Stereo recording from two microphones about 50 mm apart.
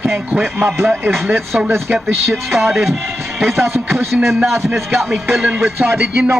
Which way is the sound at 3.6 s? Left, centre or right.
Right.